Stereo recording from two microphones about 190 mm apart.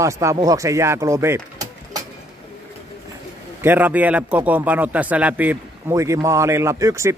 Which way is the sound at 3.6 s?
10° right (ahead or behind).